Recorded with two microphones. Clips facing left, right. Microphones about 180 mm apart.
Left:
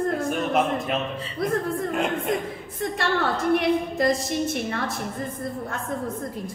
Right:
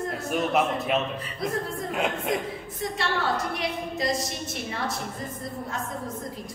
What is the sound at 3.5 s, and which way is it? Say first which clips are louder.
Speech: left 9 dB; 55° left (ahead or behind).